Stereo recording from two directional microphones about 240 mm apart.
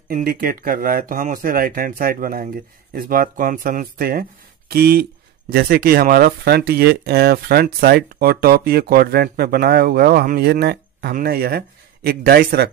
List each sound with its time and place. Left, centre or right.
0.1 s speech: right